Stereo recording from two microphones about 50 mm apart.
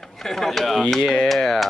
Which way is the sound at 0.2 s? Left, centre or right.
Centre.